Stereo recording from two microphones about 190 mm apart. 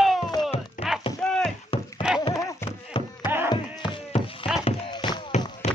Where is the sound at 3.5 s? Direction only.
25° left (ahead or behind).